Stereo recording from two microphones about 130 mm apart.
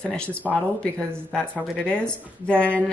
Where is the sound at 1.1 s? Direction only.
10° right (ahead or behind).